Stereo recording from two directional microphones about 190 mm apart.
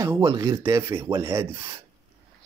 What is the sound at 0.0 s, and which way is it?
Speech, 15° right (ahead or behind).